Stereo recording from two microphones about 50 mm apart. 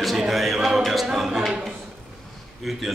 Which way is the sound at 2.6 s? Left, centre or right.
Centre.